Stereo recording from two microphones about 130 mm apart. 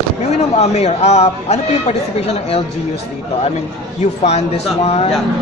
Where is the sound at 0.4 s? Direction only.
55° left (ahead or behind).